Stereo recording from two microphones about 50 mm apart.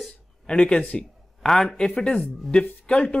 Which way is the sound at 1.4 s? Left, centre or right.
Centre.